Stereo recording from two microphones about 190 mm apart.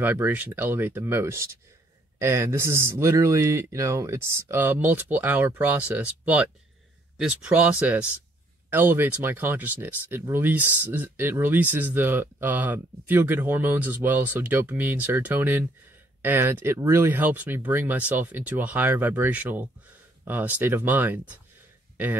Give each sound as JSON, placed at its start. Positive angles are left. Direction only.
{"t": 0.0, "sound": "speech", "side_deg": -10}